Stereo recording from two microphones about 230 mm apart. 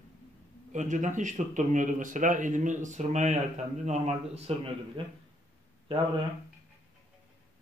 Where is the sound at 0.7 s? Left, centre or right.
Right.